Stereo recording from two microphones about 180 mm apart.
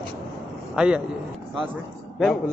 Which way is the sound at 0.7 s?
5° right (ahead or behind).